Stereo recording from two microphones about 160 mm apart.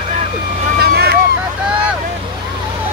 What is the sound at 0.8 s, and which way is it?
Vehicle, 80° right.